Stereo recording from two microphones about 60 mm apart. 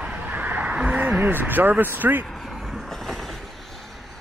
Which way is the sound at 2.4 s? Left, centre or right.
Centre.